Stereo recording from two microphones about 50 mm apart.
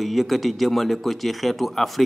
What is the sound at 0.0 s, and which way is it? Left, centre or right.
Speech, centre.